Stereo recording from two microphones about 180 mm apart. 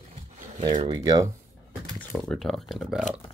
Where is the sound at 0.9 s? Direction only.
20° right (ahead or behind).